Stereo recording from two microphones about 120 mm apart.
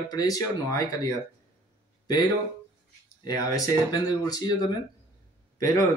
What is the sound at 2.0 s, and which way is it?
A man's voice, 35° left (ahead or behind).